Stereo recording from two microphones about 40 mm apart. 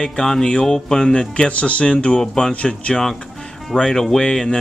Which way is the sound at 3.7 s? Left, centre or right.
Centre.